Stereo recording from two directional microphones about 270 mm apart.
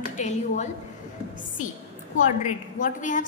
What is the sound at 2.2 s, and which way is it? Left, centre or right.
A woman's voice, left.